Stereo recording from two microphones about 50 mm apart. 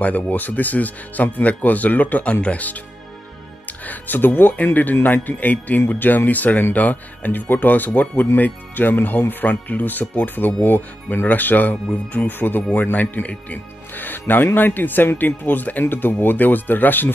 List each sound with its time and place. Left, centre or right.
0.0 s speech: left
3.8 s speech: left
12.3 s speech: left